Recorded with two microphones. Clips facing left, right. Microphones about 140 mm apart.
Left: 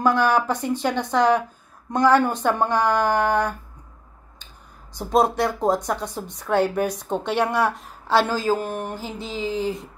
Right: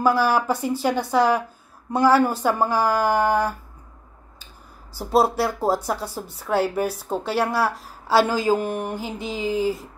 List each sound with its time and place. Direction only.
0.0 s speech: 5° right (ahead or behind)
4.9 s speech: 5° right (ahead or behind)